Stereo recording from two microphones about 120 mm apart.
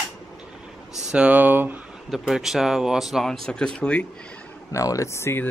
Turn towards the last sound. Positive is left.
turn(degrees=20)  # may be behind; listen again after turning